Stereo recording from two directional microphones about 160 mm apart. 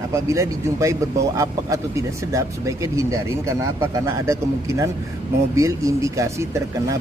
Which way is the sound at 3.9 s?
20° right (ahead or behind).